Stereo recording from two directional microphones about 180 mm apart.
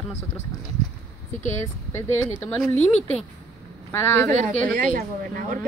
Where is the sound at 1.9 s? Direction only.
15° left (ahead or behind).